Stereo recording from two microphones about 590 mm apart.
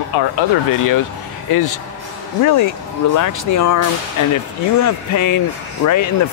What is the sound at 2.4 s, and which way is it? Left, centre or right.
Speech, left.